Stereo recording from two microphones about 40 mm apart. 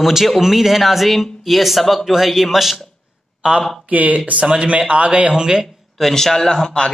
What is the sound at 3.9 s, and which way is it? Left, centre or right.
Speech, right.